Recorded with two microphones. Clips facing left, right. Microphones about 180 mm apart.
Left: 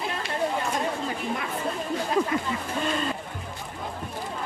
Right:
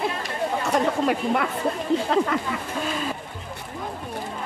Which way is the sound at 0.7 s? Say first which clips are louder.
Right 7 dB; 75° right (ahead or behind).